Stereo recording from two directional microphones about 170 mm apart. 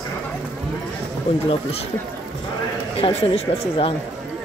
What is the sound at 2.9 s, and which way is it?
Speech, 30° left (ahead or behind).